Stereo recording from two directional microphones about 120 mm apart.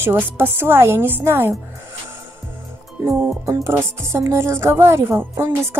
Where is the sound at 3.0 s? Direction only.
15° right (ahead or behind).